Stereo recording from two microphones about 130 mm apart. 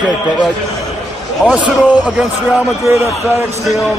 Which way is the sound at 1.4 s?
10° right (ahead or behind).